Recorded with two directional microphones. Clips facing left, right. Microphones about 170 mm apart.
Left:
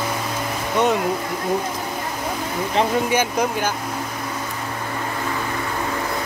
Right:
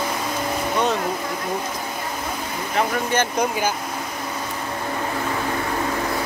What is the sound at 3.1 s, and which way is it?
Speech, 10° left (ahead or behind).